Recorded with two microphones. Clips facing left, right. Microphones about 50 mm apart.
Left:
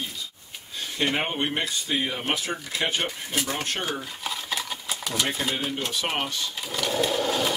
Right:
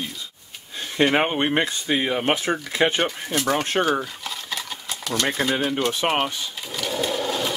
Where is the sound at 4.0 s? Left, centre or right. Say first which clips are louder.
Right 1 dB; centre.